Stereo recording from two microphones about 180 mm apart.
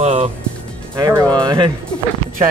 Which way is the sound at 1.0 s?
20° right (ahead or behind).